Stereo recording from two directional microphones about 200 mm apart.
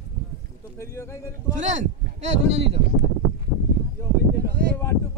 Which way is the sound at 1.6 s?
40° right (ahead or behind).